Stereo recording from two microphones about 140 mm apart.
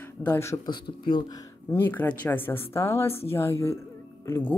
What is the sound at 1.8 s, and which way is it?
A woman's voice, 15° left (ahead or behind).